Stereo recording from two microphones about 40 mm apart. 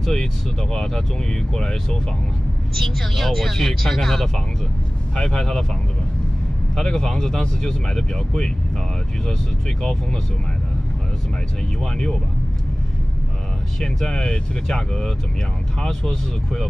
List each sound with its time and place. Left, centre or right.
0.0 s speech: centre
2.7 s speech: centre
5.3 s speech: centre
6.8 s speech: centre
11.8 s speech: centre
13.7 s speech: centre